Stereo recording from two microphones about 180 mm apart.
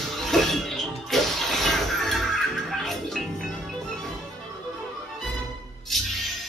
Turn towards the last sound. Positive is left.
turn(degrees=0)  # may be behind; listen again after turning